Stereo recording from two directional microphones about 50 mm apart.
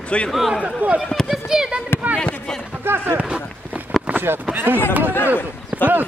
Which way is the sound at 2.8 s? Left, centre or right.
Right.